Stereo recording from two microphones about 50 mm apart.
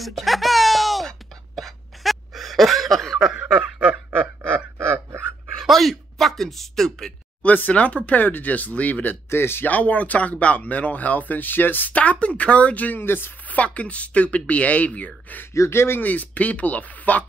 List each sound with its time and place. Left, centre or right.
0.0 s wail: centre
3.2 s snicker: centre
4.7 s a sound: right
5.6 s a sound: centre
7.4 s speech: left
9.3 s speech: left
9.7 s speech: left
12.0 s speech: left
13.0 s speech: left
13.5 s speech: left
15.5 s speech: left
16.0 s speech: left